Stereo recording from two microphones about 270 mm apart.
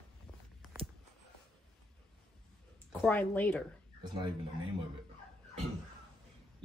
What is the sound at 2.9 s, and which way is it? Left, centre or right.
Speech, centre.